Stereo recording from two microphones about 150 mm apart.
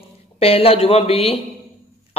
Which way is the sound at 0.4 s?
40° left (ahead or behind).